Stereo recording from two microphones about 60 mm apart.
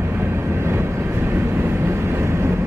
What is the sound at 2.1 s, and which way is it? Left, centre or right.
Vehicle, right.